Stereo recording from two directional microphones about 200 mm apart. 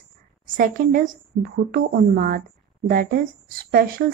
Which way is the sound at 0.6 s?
45° right (ahead or behind).